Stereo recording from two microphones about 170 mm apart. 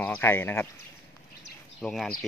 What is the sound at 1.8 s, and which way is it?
Speech, 5° left (ahead or behind).